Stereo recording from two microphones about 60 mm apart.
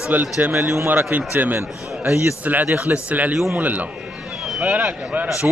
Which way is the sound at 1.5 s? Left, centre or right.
Right.